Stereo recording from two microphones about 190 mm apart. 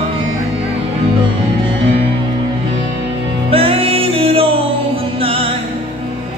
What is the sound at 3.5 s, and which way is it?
Music, 30° right (ahead or behind).